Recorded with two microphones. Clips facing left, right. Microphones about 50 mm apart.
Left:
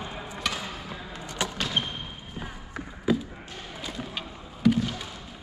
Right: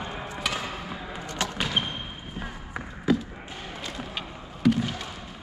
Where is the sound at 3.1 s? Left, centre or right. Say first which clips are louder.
Right 1 dB; centre.